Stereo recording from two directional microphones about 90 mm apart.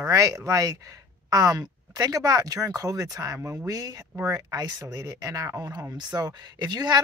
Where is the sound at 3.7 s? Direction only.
45° right (ahead or behind).